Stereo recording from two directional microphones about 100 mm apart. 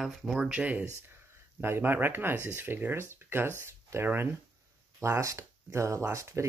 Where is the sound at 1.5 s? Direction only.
20° right (ahead or behind).